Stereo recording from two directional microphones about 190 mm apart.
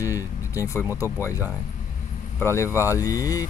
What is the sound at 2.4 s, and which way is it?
Speech, 15° left (ahead or behind).